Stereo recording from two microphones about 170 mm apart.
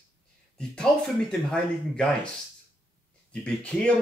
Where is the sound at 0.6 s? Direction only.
5° left (ahead or behind).